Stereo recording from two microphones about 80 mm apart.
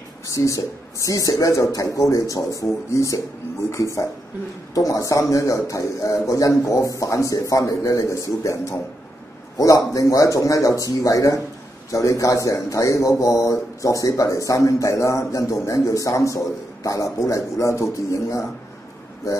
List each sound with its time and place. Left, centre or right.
0.3 s speech: left
9.9 s speech: left